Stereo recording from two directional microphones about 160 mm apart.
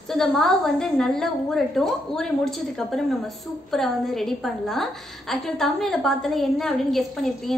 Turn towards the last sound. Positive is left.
turn(degrees=0)  # may be behind; listen again after turning